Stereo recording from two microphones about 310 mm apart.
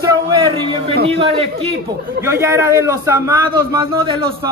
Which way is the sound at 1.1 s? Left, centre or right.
Centre.